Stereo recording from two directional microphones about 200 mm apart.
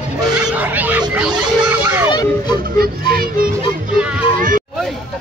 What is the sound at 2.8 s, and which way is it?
Music, 50° right (ahead or behind).